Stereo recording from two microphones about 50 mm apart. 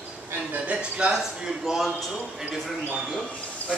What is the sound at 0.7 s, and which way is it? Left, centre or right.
Speech, right.